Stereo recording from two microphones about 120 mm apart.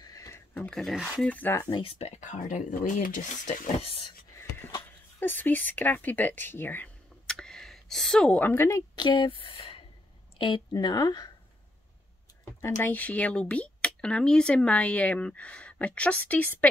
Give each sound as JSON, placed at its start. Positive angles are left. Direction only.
{"t": 0.0, "sound": "a sound", "side_deg": 30}
{"t": 0.6, "sound": "speech", "side_deg": 5}
{"t": 1.2, "sound": "speech", "side_deg": 15}
{"t": 1.7, "sound": "speech", "side_deg": 50}
{"t": 3.8, "sound": "speech", "side_deg": 50}
{"t": 5.2, "sound": "speech", "side_deg": 15}
{"t": 7.2, "sound": "a sound", "side_deg": 5}
{"t": 8.9, "sound": "speech", "side_deg": 40}
{"t": 9.4, "sound": "speech", "side_deg": 50}
{"t": 10.4, "sound": "speech", "side_deg": 40}
{"t": 12.6, "sound": "speech", "side_deg": 20}